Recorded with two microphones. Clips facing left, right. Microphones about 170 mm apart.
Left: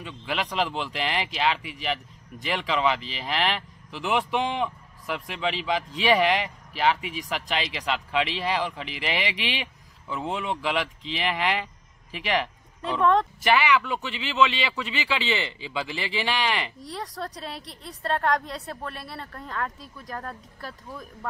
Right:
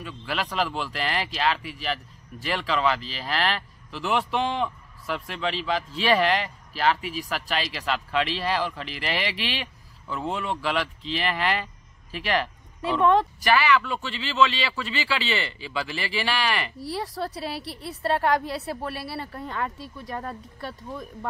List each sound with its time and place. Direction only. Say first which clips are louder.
0.0 s speech: even; 15° left (ahead or behind)
13.0 s speech: right 1 dB; 5° right (ahead or behind)
13.4 s speech: even; 20° left (ahead or behind)
16.8 s speech: right 4 dB; 5° right (ahead or behind)